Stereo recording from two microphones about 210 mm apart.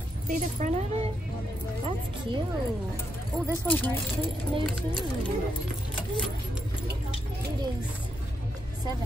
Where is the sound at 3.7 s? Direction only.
10° left (ahead or behind).